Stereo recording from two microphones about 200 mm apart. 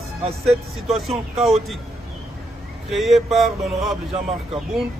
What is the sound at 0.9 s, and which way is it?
Speech, centre (ahead or behind).